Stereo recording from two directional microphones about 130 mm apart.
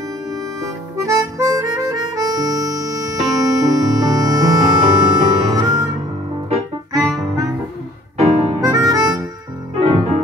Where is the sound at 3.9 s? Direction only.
30° right (ahead or behind).